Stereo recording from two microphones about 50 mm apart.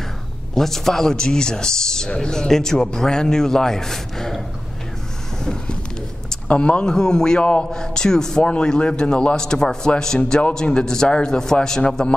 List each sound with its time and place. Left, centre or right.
0.6 s speech: centre
5.4 s a sound: centre
6.4 s speech: left